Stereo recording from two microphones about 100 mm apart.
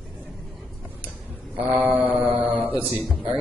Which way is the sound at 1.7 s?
15° right (ahead or behind).